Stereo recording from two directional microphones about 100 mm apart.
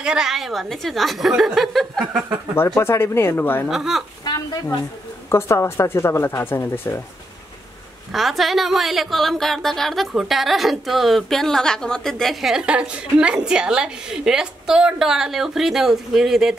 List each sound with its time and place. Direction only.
0.0 s a woman's voice: 5° right (ahead or behind)
2.7 s speech: 25° left (ahead or behind)
3.6 s a woman's voice: centre (ahead or behind)
4.2 s a woman's voice: 40° left (ahead or behind)
5.3 s speech: 25° left (ahead or behind)
8.1 s a woman's voice: centre (ahead or behind)